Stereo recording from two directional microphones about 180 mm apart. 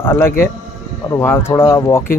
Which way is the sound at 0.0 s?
10° left (ahead or behind).